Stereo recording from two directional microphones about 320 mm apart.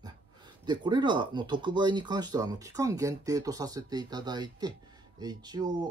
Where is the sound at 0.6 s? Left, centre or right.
Centre.